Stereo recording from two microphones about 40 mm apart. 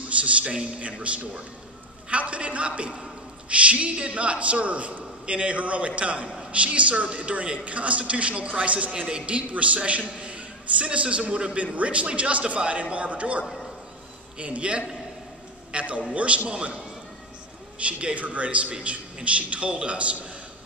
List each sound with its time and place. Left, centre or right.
0.1 s a man's voice: right
2.0 s a sound: right
3.4 s a man's voice: right
8.9 s a man's voice: right
9.2 s a man's voice: right